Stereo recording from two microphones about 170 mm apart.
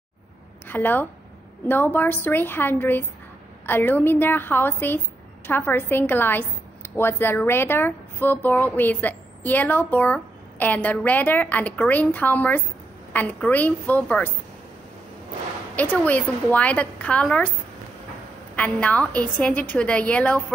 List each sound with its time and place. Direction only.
0.7 s a woman's voice: 10° left (ahead or behind)
15.7 s a woman's voice: 10° left (ahead or behind)
18.6 s a woman's voice: 10° left (ahead or behind)